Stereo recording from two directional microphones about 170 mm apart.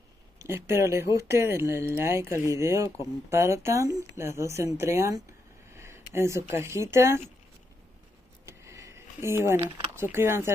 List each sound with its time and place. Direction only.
0.4 s speech: 15° right (ahead or behind)
8.5 s a sound: 15° right (ahead or behind)
9.9 s speech: 15° right (ahead or behind)